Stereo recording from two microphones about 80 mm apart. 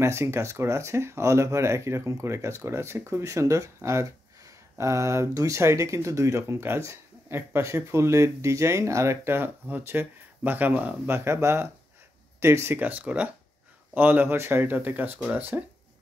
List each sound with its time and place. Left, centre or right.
0.0 s speech: right